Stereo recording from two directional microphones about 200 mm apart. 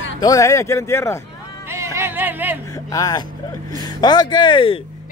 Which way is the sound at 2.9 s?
20° left (ahead or behind).